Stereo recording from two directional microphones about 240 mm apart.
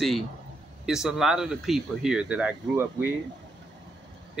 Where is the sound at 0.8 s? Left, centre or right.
Centre.